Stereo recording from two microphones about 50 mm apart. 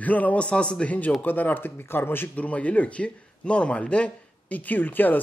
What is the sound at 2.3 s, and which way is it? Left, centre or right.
Speech, left.